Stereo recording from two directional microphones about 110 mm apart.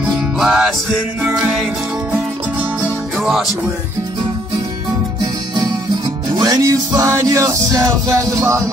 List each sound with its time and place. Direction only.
0.4 s music: 5° right (ahead or behind)
3.2 s music: centre (ahead or behind)
5.2 s music: 40° right (ahead or behind)